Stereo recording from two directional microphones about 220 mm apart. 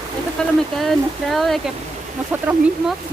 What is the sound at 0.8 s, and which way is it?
Speech, centre (ahead or behind).